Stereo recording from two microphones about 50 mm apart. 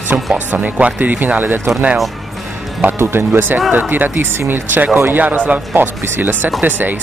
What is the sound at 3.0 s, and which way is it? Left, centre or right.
Speech, right.